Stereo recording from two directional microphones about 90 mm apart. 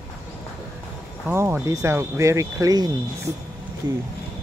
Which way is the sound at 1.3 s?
25° right (ahead or behind).